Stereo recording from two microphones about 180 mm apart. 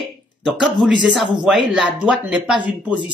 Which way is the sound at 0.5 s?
5° right (ahead or behind).